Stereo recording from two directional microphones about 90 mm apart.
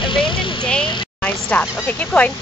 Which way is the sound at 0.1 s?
65° left (ahead or behind).